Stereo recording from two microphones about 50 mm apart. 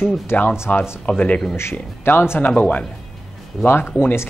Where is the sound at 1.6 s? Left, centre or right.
Left.